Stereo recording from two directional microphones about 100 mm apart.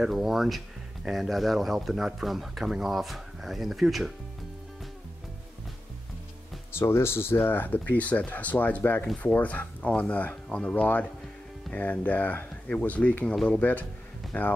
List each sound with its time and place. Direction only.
0.0 s speech: 5° right (ahead or behind)
6.8 s speech: 25° left (ahead or behind)